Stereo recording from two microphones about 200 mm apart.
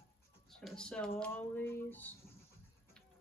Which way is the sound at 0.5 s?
5° left (ahead or behind).